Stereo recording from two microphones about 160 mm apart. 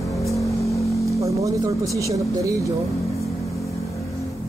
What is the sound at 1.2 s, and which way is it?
Speech, 20° right (ahead or behind).